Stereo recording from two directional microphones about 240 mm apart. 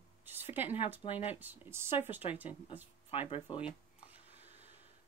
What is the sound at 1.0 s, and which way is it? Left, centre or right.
Speech, left.